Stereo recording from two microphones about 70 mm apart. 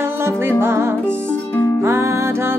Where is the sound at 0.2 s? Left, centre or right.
Right.